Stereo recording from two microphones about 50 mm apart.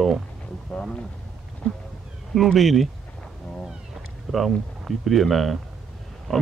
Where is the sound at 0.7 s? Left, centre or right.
Left.